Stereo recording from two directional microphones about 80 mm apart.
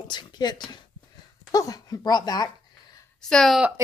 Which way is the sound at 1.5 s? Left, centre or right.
Left.